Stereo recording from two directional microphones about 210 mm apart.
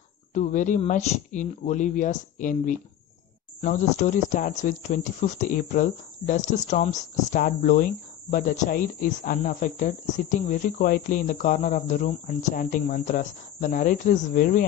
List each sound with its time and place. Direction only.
0.3 s speech: 35° left (ahead or behind)